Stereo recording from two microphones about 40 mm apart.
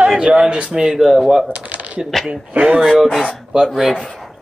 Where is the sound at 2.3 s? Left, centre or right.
Right.